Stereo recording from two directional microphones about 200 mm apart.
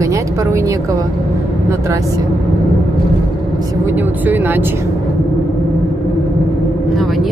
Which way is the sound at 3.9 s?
10° right (ahead or behind).